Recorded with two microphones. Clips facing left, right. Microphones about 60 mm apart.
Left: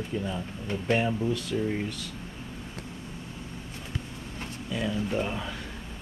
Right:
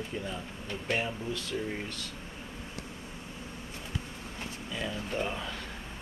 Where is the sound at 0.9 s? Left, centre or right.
Centre.